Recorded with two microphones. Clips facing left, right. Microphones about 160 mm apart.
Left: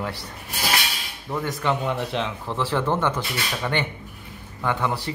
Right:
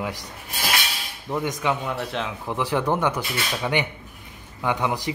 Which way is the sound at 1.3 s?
15° right (ahead or behind).